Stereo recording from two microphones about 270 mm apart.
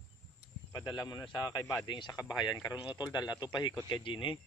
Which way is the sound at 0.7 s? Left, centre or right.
Centre.